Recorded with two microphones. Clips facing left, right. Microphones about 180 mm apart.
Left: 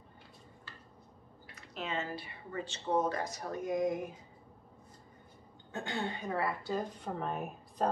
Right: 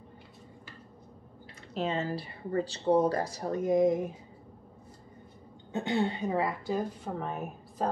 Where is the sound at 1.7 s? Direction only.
35° right (ahead or behind).